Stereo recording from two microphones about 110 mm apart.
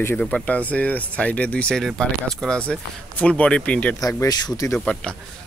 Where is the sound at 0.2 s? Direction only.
10° left (ahead or behind).